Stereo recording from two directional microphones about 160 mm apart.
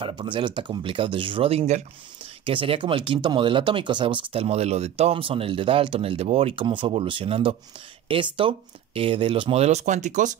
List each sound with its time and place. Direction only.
0.0 s speech: 30° right (ahead or behind); by 10.3 s 50° right (ahead or behind)